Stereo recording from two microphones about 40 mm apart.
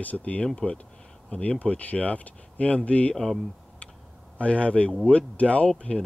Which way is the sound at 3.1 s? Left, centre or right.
Centre.